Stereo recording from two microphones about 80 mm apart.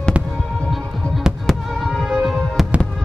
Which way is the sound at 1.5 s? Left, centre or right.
Centre.